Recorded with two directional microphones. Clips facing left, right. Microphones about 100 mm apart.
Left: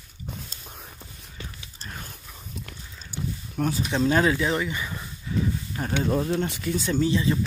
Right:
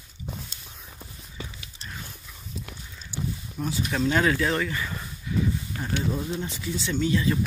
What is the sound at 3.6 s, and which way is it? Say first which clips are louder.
Speech: left 5 dB; 65° left (ahead or behind).